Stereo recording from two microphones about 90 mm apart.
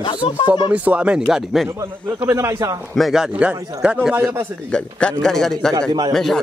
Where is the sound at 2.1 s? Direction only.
35° right (ahead or behind).